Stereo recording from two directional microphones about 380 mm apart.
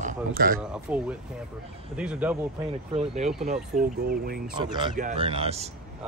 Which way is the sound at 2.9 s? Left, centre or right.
Centre.